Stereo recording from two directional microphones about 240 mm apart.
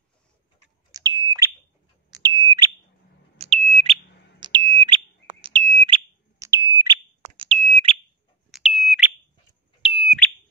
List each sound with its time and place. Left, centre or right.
0.9 s smoke detector: centre
2.0 s bird: centre
3.4 s smoke detector: right
7.2 s a sound: right
8.5 s smoke detector: centre